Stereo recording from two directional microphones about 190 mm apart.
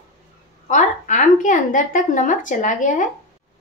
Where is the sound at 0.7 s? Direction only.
40° left (ahead or behind).